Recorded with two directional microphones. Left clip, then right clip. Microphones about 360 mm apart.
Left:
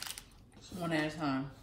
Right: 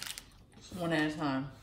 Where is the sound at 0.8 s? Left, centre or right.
Centre.